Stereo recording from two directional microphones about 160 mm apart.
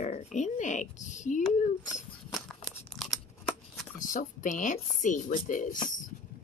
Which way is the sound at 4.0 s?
55° left (ahead or behind).